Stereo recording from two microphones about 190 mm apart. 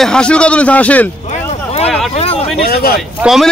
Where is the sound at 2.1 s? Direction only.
30° left (ahead or behind).